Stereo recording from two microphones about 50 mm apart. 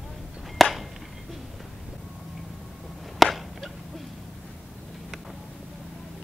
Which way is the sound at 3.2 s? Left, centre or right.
Centre.